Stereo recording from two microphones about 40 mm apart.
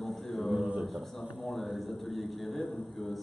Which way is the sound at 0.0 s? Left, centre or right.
Centre.